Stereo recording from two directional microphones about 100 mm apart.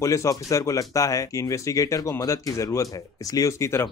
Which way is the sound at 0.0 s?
30° left (ahead or behind).